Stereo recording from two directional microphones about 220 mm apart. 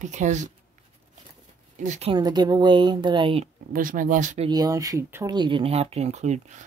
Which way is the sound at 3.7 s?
40° right (ahead or behind).